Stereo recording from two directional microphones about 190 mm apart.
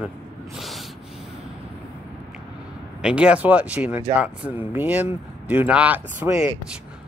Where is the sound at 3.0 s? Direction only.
5° right (ahead or behind).